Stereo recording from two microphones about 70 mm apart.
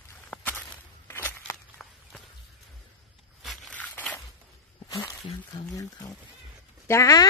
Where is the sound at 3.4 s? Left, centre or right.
Centre.